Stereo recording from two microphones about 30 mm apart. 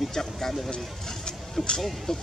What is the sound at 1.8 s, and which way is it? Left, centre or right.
Speech, centre.